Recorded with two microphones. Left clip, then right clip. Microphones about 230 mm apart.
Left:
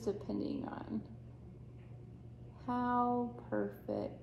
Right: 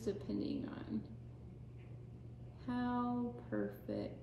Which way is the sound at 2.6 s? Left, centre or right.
Right.